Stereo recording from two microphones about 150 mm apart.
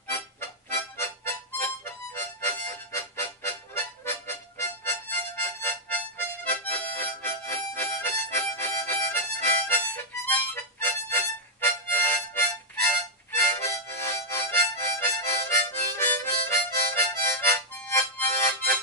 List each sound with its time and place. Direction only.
0.1 s harmonica: 15° left (ahead or behind)